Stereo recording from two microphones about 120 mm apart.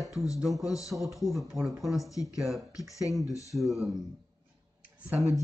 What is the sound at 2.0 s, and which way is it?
Speech, 25° left (ahead or behind).